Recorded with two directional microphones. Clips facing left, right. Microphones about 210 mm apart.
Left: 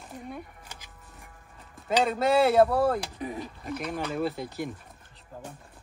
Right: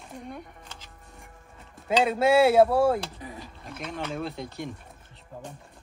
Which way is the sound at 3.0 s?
20° left (ahead or behind).